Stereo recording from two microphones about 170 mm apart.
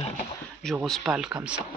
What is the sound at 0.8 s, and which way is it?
Speech, centre (ahead or behind).